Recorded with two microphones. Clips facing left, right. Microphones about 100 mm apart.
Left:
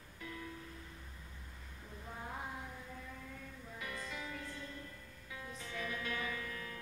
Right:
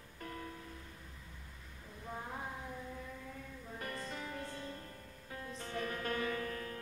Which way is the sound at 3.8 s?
45° right (ahead or behind).